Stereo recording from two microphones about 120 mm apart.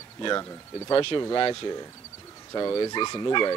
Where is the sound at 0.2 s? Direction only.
35° left (ahead or behind).